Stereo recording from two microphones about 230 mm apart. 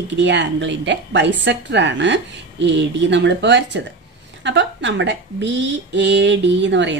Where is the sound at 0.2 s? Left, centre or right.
Right.